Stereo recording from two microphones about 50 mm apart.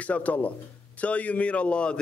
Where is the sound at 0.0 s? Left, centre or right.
Left.